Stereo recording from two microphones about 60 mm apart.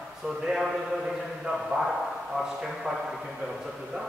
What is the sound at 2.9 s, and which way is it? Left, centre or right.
Speech, centre.